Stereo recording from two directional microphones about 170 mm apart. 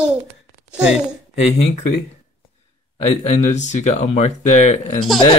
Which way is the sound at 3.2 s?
40° left (ahead or behind).